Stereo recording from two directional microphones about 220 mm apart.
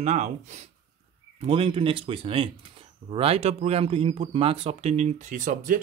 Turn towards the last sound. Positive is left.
turn(degrees=-35)  # may be behind; listen again after turning